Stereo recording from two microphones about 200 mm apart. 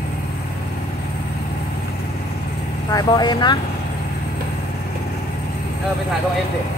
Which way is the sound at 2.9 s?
20° left (ahead or behind).